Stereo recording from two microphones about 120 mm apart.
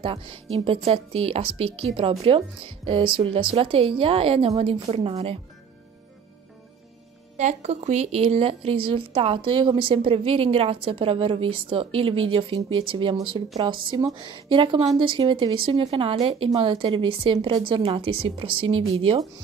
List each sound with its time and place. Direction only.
0.0 s speech: 45° right (ahead or behind)
7.3 s speech: 70° right (ahead or behind); by 18.6 s 50° right (ahead or behind)